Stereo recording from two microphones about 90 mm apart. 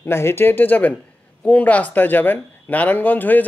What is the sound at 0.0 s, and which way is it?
A man's voice, 30° left (ahead or behind).